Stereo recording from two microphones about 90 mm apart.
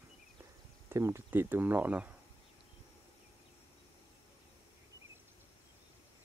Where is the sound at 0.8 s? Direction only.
30° right (ahead or behind).